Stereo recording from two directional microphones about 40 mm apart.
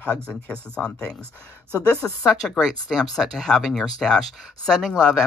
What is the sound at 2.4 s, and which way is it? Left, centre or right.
Speech, centre.